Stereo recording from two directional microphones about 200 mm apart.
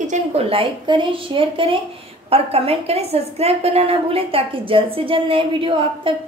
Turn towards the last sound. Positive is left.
turn(degrees=-25)  # may be behind; listen again after turning